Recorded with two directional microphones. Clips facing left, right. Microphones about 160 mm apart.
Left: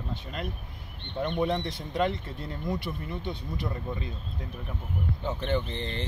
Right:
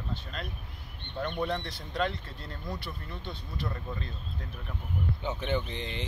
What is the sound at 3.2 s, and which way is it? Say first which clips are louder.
Speech: left 1 dB; 20° left (ahead or behind).